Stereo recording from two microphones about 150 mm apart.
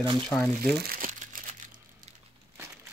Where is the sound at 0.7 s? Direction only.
80° right; by 1.6 s 60° right (ahead or behind).